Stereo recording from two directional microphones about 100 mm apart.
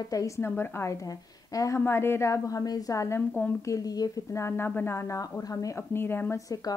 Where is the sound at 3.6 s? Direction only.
35° left (ahead or behind).